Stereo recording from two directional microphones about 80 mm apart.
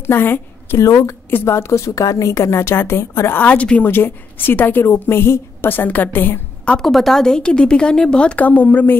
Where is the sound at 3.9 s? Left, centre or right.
Left.